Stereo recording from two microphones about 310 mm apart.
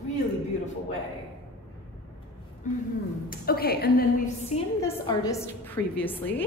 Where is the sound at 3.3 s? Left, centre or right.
Left.